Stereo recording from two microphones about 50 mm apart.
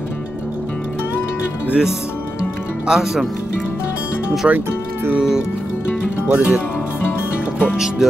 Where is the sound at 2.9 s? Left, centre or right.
Centre.